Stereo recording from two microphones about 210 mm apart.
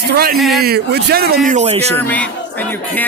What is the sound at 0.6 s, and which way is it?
Speech, 50° right (ahead or behind).